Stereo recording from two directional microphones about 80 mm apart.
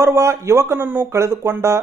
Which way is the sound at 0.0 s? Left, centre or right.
Right.